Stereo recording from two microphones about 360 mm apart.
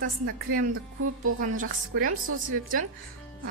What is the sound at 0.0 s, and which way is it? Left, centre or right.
Speech, right.